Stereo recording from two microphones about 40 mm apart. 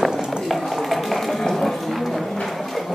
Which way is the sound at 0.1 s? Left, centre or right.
Centre.